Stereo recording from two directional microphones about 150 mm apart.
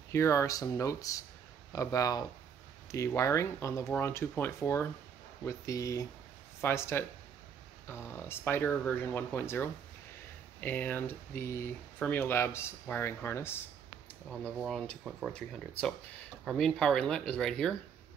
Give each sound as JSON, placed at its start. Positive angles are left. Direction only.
{"t": 0.1, "sound": "speech", "side_deg": 20}
{"t": 8.2, "sound": "speech", "side_deg": 15}
{"t": 14.6, "sound": "speech", "side_deg": 0}
{"t": 16.4, "sound": "speech", "side_deg": 5}